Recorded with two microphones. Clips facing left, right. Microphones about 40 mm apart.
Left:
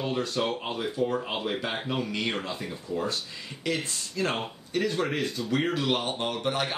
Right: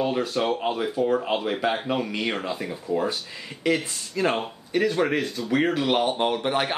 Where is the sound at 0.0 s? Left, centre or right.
Centre.